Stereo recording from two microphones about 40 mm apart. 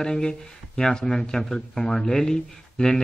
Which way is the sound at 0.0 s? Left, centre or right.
Centre.